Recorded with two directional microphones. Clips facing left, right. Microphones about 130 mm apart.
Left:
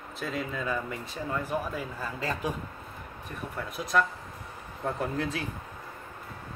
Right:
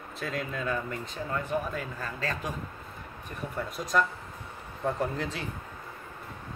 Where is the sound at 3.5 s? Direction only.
Centre (ahead or behind).